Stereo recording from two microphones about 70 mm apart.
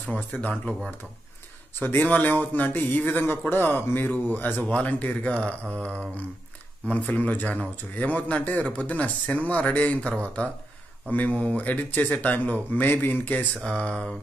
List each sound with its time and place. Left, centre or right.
0.0 s a man's voice: centre
13.7 s mantra: centre